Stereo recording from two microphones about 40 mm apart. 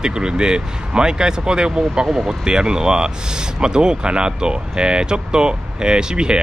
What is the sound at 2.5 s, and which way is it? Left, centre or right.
Speech, right.